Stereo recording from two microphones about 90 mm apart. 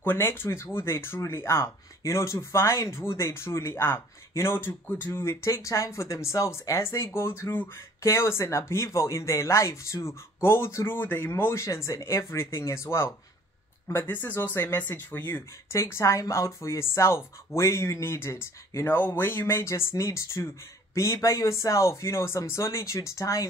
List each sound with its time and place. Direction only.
0.0 s speech: 25° left (ahead or behind)